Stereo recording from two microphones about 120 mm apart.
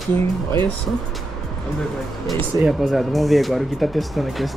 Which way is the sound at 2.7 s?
Centre (ahead or behind).